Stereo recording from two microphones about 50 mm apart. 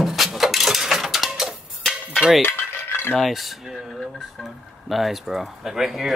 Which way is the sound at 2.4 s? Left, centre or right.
Left.